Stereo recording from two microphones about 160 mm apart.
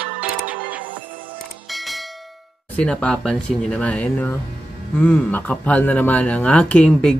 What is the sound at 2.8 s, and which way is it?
Speech, 5° left (ahead or behind).